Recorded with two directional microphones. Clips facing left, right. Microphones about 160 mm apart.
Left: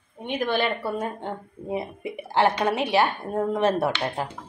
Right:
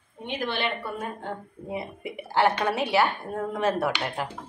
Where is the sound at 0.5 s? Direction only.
45° left (ahead or behind).